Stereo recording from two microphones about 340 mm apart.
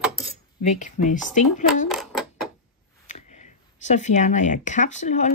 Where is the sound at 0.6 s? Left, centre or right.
Left.